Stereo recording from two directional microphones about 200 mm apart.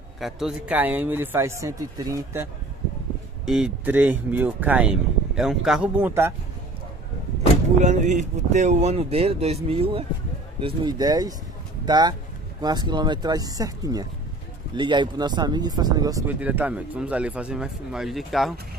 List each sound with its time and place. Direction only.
0.2 s speech: centre (ahead or behind)
3.4 s speech: 5° right (ahead or behind)
7.8 s speech: 35° right (ahead or behind); by 18.5 s centre (ahead or behind)